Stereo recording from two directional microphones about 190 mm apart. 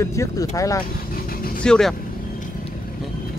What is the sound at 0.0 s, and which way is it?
Speech, 15° left (ahead or behind).